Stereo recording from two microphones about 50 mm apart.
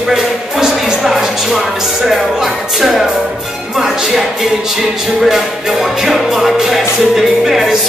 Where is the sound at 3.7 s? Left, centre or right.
Centre.